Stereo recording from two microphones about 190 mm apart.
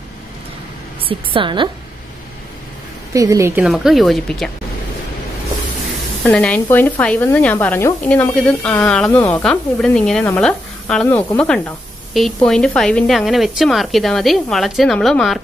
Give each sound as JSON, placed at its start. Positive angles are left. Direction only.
{"t": 1.0, "sound": "a woman's voice", "side_deg": -25}
{"t": 3.1, "sound": "a woman's voice", "side_deg": -15}
{"t": 3.6, "sound": "speech", "side_deg": 0}
{"t": 6.2, "sound": "speech", "side_deg": 5}